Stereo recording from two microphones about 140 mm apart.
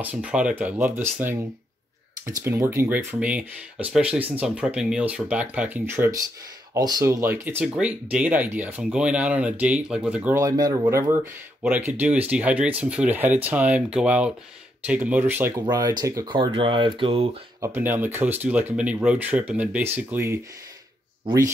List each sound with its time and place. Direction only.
0.0 s speech: 10° right (ahead or behind)
2.4 s speech: 20° right (ahead or behind)
6.7 s speech: 25° right (ahead or behind); by 10.4 s 10° right (ahead or behind)
10.4 s speech: 25° right (ahead or behind)
11.6 s speech: 10° right (ahead or behind)
15.6 s speech: 30° right (ahead or behind)
16.3 s speech: 35° right (ahead or behind)
17.6 s speech: 15° right (ahead or behind)